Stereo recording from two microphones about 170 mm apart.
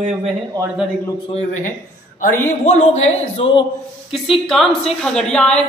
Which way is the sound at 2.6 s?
40° left (ahead or behind).